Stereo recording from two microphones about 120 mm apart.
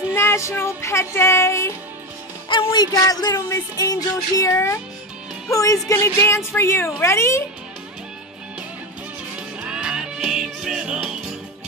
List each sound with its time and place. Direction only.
0.1 s speech: 20° left (ahead or behind)
2.5 s music: 40° left (ahead or behind); by 4.7 s 25° left (ahead or behind)
5.5 s speech: 25° left (ahead or behind)
9.6 s music: 5° right (ahead or behind)